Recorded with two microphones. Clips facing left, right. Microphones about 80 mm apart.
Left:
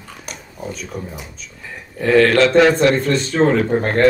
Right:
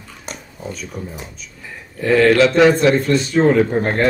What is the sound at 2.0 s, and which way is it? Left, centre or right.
Speech, centre.